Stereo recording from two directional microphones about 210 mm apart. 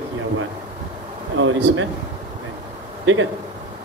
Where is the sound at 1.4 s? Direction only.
70° right (ahead or behind).